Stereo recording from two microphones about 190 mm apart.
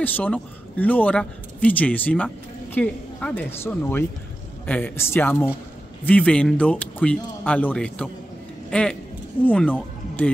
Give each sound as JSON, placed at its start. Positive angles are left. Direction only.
{"t": 0.0, "sound": "speech", "side_deg": 10}